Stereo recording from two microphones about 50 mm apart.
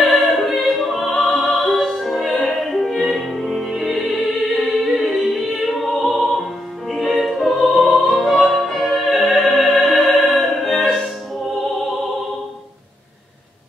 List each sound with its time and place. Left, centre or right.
0.0 s opera: centre
7.2 s music: centre